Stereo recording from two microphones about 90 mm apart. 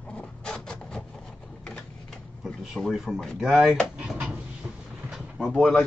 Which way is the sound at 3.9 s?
10° right (ahead or behind).